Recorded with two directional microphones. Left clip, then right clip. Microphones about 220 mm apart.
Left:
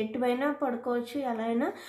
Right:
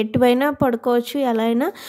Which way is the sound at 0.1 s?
55° right (ahead or behind).